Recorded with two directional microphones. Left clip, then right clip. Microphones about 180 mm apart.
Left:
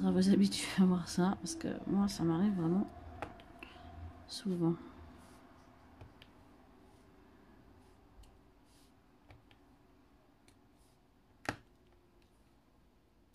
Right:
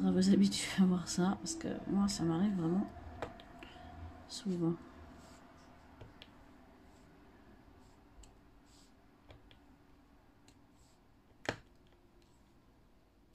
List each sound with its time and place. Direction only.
0.0 s speech: 15° left (ahead or behind)